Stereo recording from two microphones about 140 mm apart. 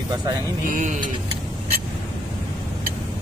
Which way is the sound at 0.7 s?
65° right (ahead or behind).